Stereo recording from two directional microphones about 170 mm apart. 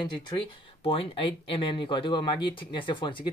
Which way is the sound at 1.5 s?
30° left (ahead or behind).